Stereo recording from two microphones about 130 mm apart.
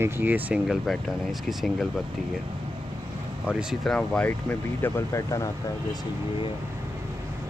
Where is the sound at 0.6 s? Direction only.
Centre (ahead or behind).